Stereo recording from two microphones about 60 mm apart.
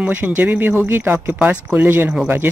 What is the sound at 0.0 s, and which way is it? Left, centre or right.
Speech, right.